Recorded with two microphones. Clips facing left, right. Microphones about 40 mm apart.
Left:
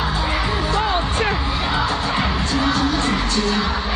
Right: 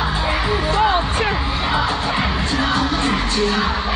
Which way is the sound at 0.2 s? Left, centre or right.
Centre.